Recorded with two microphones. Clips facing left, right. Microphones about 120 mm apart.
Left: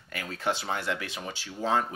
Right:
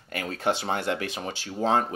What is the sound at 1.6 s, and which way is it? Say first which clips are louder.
Speech: right 3 dB; 35° right (ahead or behind).